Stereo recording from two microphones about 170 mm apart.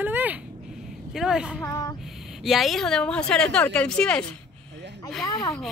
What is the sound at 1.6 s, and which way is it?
Speech, 20° left (ahead or behind).